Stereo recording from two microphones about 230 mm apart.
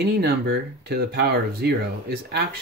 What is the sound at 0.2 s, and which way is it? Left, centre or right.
Speech, right.